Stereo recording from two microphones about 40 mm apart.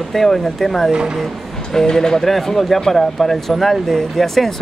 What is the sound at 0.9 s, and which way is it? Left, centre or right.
Speech, centre.